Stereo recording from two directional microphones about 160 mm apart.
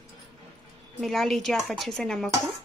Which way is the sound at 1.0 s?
Centre (ahead or behind).